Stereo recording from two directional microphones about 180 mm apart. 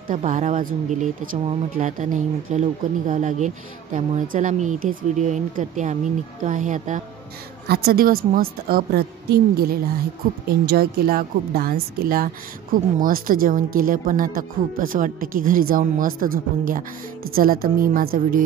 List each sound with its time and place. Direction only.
0.1 s speech: 45° right (ahead or behind)
7.6 s a woman's voice: 60° right (ahead or behind)